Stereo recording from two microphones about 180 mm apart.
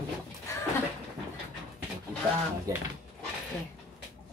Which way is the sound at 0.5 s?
15° left (ahead or behind).